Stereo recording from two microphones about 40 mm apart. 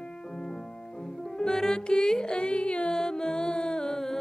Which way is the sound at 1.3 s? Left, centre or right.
Centre.